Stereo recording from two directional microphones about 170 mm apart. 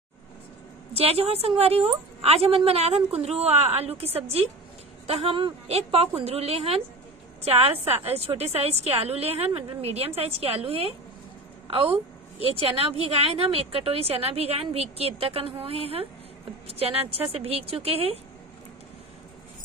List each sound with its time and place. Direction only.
0.9 s a woman's voice: 35° right (ahead or behind)
7.8 s a woman's voice: 35° right (ahead or behind)